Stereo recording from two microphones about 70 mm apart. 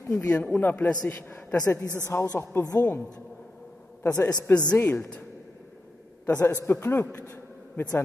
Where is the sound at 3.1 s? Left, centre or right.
Centre.